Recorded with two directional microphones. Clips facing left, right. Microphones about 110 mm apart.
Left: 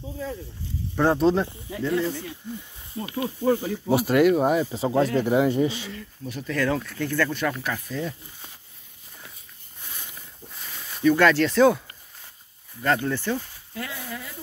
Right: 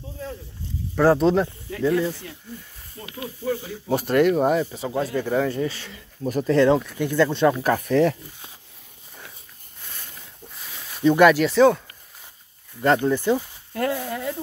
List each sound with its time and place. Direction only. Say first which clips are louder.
0.9 s speech: right 3 dB; centre (ahead or behind)
3.0 s speech: left 6 dB; 30° left (ahead or behind)
3.9 s speech: even; 5° left (ahead or behind)
4.7 s speech: left 4 dB; 30° left (ahead or behind)
5.1 s speech: left 2 dB; 15° left (ahead or behind)
6.2 s speech: right 11 dB; 45° right (ahead or behind)
6.5 s speech: right 7 dB; 25° right (ahead or behind)
7.8 s speech: right 12 dB; 75° right (ahead or behind)
10.5 s a sound: left 1 dB; centre (ahead or behind)
11.1 s speech: right 3 dB; 15° right (ahead or behind)
11.5 s speech: right 2 dB; centre (ahead or behind)
12.8 s speech: right 5 dB; 20° right (ahead or behind)
13.7 s speech: right 9 dB; 55° right (ahead or behind)